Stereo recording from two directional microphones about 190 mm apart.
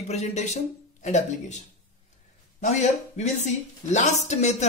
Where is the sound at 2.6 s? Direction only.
35° left (ahead or behind).